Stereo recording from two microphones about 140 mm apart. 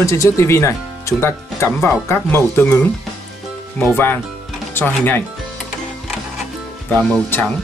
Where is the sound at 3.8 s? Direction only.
15° left (ahead or behind).